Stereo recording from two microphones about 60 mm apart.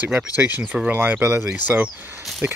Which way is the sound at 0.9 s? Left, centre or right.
Right.